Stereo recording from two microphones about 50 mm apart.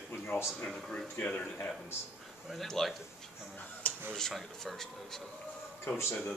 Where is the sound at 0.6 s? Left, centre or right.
Centre.